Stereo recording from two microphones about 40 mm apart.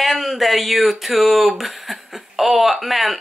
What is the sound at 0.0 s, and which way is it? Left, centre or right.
Speech, centre.